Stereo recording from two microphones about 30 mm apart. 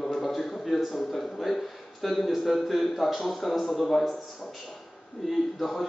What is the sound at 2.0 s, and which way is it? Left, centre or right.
A man's voice, centre.